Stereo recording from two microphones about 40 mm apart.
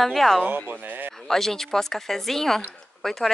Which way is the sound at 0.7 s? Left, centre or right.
Right.